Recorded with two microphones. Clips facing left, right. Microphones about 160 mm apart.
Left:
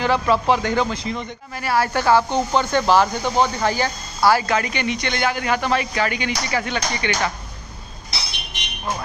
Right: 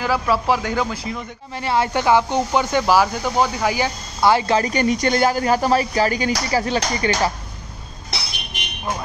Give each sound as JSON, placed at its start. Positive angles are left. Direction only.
{"t": 0.0, "sound": "speech", "side_deg": -5}
{"t": 1.6, "sound": "speech", "side_deg": -20}